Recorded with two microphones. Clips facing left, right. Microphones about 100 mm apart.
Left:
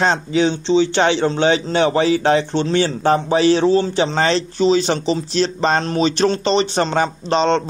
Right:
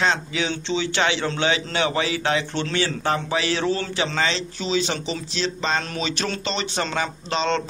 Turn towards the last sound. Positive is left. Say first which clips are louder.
# left 7 dB
turn(degrees=35)  # may be behind; listen again after turning